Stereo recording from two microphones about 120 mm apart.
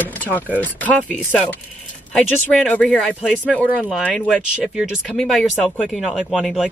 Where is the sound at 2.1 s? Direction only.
5° left (ahead or behind).